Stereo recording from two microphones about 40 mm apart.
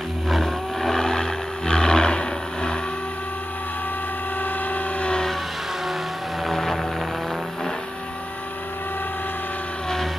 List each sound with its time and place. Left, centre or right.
0.3 s vehicle: centre
6.4 s vehicle: centre